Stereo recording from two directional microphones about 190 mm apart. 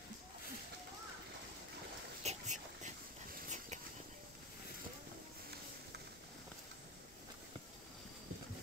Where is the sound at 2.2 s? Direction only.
35° right (ahead or behind).